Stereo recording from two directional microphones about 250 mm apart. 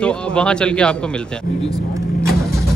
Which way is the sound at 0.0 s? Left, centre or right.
Centre.